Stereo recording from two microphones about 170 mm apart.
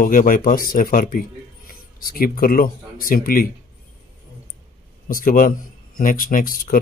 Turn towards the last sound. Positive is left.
turn(degrees=55)  # may be behind; listen again after turning